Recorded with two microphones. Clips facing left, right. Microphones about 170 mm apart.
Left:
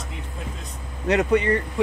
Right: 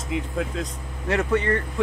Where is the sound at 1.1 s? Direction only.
20° left (ahead or behind).